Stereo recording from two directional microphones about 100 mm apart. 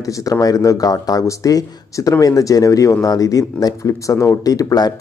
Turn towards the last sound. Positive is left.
turn(degrees=40)  # may be behind; listen again after turning